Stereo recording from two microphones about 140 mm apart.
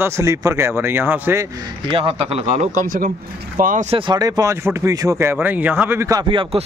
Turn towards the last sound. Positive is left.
turn(degrees=-35)  # may be behind; listen again after turning